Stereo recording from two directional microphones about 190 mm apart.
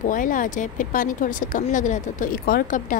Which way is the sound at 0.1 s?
45° left (ahead or behind).